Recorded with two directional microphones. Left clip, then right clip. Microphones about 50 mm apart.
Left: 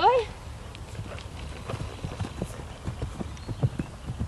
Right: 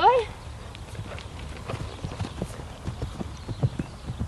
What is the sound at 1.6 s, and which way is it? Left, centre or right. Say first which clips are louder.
Clip-clop: right 1 dB; centre.